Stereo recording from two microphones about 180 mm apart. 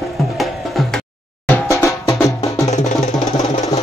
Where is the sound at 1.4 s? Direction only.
15° left (ahead or behind).